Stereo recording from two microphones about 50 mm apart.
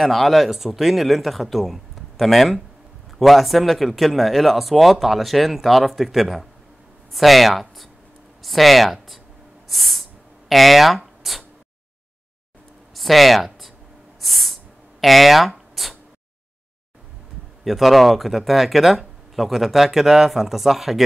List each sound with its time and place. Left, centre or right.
0.0 s speech: centre
9.7 s a sound: centre
10.5 s speech: centre
12.9 s speech: centre
14.2 s a sound: centre
17.6 s speech: centre